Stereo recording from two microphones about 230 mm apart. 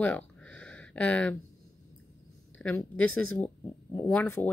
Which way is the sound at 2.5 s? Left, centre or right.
Centre.